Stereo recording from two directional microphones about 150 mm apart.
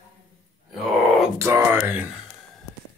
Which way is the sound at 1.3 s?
20° right (ahead or behind).